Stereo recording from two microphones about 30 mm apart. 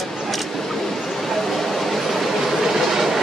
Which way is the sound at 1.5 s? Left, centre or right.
Centre.